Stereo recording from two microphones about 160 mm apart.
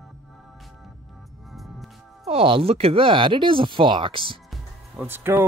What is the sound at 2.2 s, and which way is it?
Speech, 35° right (ahead or behind).